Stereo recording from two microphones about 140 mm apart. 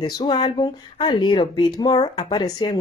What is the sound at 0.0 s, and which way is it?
Speech, 35° left (ahead or behind).